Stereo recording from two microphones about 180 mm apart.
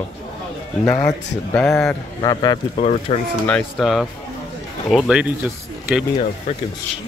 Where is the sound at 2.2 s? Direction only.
20° left (ahead or behind).